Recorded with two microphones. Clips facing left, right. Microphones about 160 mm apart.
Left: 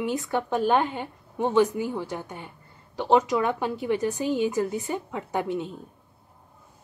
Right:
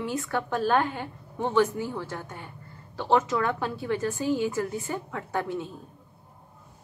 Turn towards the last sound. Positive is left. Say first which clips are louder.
# left 2 dB
turn(degrees=20)  # may be behind; listen again after turning